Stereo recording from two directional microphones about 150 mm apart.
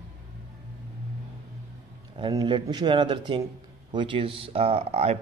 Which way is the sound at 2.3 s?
25° right (ahead or behind).